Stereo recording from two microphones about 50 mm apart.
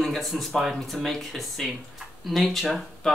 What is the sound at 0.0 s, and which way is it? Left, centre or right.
Speech, centre.